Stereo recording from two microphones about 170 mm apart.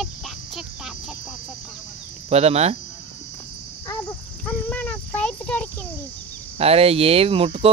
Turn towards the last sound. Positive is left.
turn(degrees=-35)  # may be behind; listen again after turning